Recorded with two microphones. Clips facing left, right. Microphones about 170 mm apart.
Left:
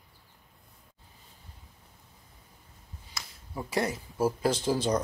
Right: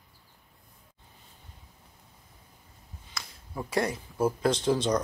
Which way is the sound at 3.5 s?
Centre (ahead or behind).